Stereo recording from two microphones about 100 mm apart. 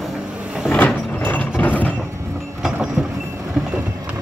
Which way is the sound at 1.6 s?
15° left (ahead or behind).